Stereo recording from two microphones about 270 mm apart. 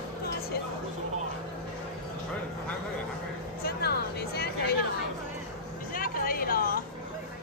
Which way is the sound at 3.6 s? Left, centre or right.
Left.